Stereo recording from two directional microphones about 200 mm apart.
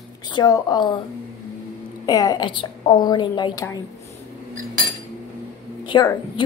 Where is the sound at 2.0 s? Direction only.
20° left (ahead or behind).